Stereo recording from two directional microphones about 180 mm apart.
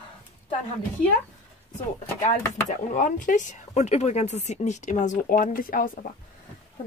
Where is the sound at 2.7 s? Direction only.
45° left (ahead or behind).